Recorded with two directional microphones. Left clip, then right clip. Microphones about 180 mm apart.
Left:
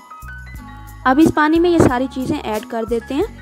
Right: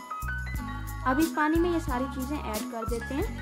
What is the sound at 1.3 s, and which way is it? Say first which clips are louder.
A woman's voice: left 12 dB; 40° left (ahead or behind).